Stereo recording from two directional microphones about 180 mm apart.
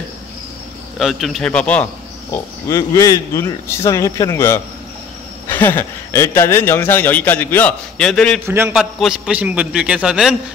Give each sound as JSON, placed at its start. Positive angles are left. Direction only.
{"t": 0.9, "sound": "a man's voice", "side_deg": 0}
{"t": 8.5, "sound": "a man's voice", "side_deg": -15}
{"t": 8.7, "sound": "a man's voice", "side_deg": -5}